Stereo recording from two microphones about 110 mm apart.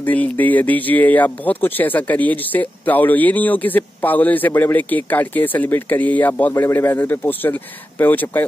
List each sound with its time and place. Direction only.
0.0 s speech: 15° left (ahead or behind)